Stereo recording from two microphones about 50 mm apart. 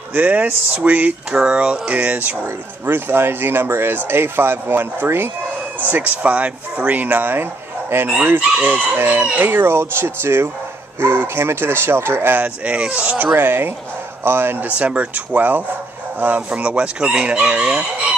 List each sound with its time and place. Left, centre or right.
0.1 s speech: right
1.3 s chicken: centre
2.4 s speech: right
5.9 s speech: right
9.5 s speech: right
12.4 s chicken: right
13.2 s speech: right
14.8 s speech: right
16.2 s chicken: right